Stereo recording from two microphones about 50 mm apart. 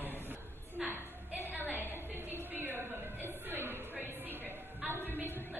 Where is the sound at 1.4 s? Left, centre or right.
Right.